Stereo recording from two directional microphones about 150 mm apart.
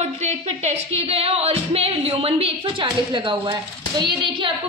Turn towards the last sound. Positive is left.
turn(degrees=-35)  # may be behind; listen again after turning